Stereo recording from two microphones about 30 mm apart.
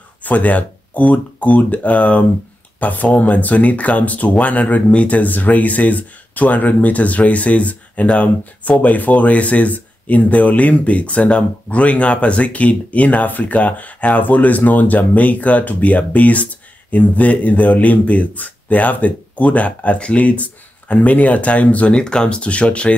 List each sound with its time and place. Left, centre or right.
0.2 s speech: left
2.8 s speech: left
21.9 s speech: left
22.4 s speech: left